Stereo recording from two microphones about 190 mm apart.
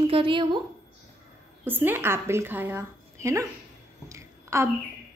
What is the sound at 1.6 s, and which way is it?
A woman's voice, 10° right (ahead or behind).